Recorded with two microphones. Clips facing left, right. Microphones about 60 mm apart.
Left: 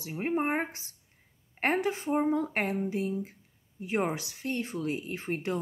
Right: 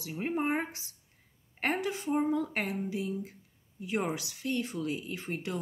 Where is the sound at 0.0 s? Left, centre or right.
Left.